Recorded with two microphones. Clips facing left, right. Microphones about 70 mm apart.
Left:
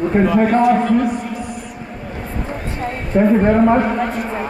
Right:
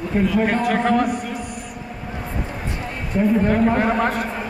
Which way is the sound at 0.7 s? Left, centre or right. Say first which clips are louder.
Left 4 dB; right.